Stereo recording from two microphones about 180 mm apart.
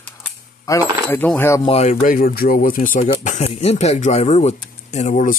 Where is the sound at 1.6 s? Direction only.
35° left (ahead or behind).